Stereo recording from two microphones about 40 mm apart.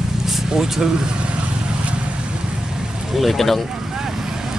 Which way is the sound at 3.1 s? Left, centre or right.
Centre.